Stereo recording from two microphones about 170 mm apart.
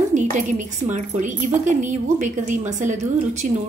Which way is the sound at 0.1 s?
45° right (ahead or behind).